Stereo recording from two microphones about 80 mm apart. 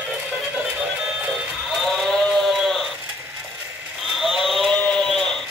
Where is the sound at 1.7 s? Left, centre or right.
Centre.